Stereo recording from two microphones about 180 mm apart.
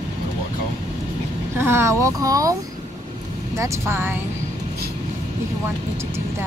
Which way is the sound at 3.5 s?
15° right (ahead or behind).